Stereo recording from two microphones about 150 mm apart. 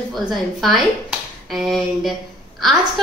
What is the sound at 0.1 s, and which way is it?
A woman's voice, centre (ahead or behind).